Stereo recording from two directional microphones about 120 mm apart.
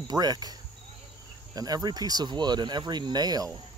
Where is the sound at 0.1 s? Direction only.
35° right (ahead or behind).